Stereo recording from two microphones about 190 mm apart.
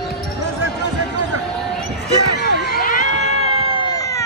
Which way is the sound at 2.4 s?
50° left (ahead or behind).